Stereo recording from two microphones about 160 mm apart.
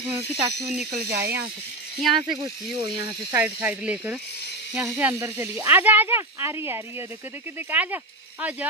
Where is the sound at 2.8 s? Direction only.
30° right (ahead or behind).